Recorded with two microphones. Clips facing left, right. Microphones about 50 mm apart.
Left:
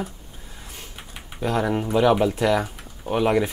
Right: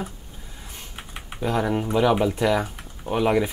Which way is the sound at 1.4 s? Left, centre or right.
Centre.